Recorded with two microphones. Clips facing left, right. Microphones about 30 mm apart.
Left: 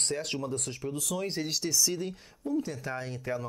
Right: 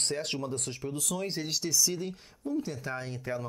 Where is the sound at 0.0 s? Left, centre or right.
Right.